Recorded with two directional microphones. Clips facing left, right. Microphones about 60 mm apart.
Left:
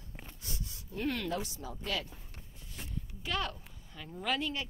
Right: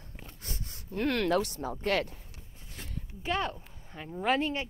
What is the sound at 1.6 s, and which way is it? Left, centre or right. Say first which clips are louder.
Speech: right 8 dB; right.